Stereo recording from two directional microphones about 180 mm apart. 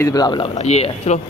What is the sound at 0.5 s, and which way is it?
Speech, 35° left (ahead or behind).